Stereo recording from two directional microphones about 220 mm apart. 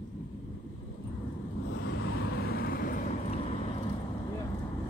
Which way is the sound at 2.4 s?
45° left (ahead or behind).